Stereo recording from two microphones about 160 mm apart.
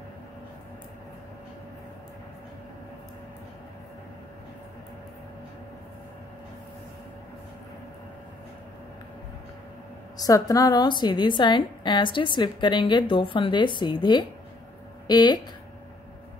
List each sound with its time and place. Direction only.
10.1 s a woman's voice: 20° left (ahead or behind)